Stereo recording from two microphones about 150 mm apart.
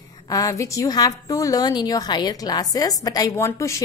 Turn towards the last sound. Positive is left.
turn(degrees=20)  # may be behind; listen again after turning